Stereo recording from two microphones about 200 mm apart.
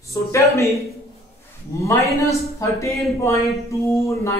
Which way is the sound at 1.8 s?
15° left (ahead or behind).